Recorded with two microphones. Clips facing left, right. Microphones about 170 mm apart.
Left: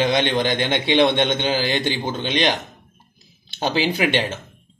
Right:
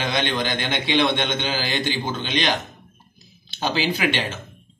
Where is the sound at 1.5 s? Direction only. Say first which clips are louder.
Left 3 dB; 55° left (ahead or behind).